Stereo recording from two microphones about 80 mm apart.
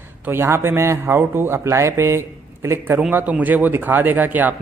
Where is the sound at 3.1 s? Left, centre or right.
Right.